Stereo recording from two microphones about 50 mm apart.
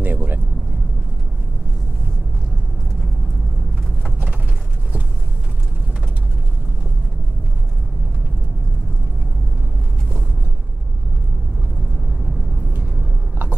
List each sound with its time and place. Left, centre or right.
0.0 s vehicle: right